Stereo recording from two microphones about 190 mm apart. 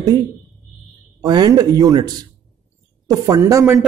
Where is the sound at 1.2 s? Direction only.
20° right (ahead or behind).